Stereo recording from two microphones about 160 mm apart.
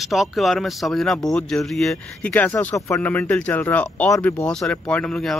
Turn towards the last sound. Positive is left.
turn(degrees=5)  # may be behind; listen again after turning